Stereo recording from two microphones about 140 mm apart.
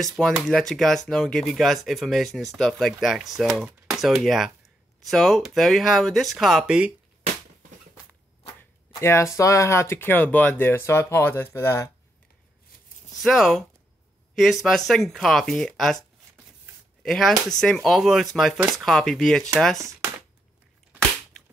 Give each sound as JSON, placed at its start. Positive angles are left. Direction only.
{"t": 0.2, "sound": "speech", "side_deg": 0}
{"t": 9.0, "sound": "speech", "side_deg": 20}
{"t": 13.2, "sound": "speech", "side_deg": 0}
{"t": 17.0, "sound": "speech", "side_deg": 5}
{"t": 19.8, "sound": "speech", "side_deg": -25}